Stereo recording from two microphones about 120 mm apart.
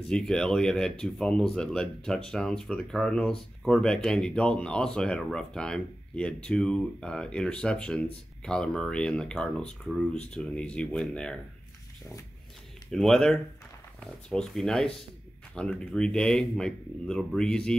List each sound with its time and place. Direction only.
0.1 s speech: 5° left (ahead or behind)
12.9 s speech: centre (ahead or behind)